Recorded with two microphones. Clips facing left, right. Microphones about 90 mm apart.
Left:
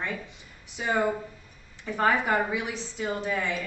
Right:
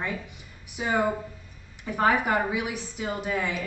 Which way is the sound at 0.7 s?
15° right (ahead or behind).